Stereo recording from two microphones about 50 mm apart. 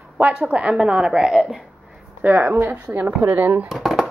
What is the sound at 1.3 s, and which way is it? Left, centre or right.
Speech, centre.